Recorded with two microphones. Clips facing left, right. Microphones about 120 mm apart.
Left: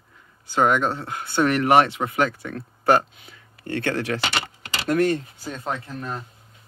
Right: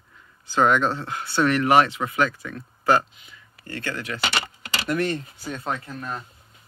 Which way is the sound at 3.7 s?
70° left (ahead or behind).